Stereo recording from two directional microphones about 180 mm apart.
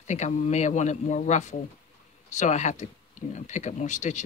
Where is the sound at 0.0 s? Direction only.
40° left (ahead or behind).